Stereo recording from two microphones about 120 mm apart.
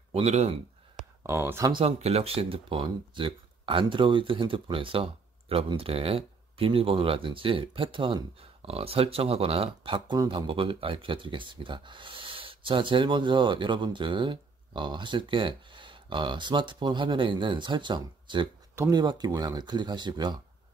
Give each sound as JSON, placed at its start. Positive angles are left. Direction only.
{"t": 0.1, "sound": "speech", "side_deg": -60}
{"t": 1.2, "sound": "speech", "side_deg": -20}
{"t": 1.6, "sound": "speech", "side_deg": -40}
{"t": 1.9, "sound": "speech", "side_deg": -60}